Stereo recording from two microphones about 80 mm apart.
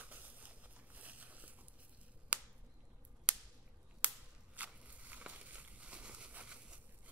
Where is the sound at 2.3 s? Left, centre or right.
Centre.